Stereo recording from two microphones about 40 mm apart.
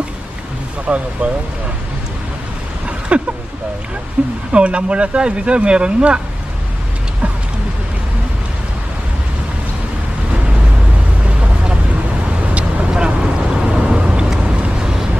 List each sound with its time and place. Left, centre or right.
0.8 s speech: right
3.1 s speech: right
4.5 s speech: right
11.2 s vehicle: right
12.9 s vehicle: right